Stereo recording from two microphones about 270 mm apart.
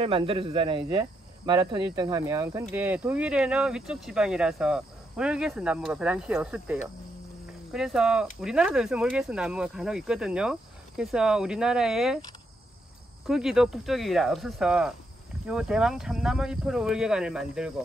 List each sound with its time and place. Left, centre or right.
0.0 s speech: centre
13.3 s speech: centre